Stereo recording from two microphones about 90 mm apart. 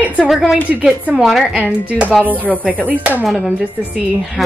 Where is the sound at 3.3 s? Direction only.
Centre (ahead or behind).